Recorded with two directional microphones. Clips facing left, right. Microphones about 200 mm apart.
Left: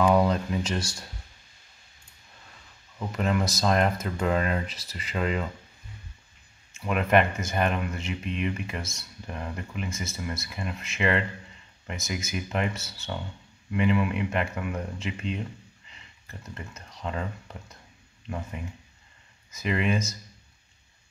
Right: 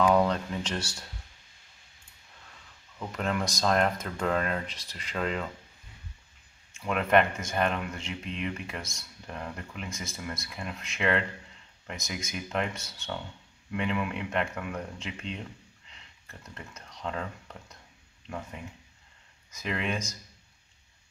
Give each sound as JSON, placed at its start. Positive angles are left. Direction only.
{"t": 0.0, "sound": "a sound", "side_deg": 5}
{"t": 3.0, "sound": "speech", "side_deg": 5}
{"t": 6.7, "sound": "speech", "side_deg": 5}
{"t": 19.5, "sound": "speech", "side_deg": 5}